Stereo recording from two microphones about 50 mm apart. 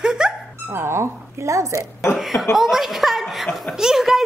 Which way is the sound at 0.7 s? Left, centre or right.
Right.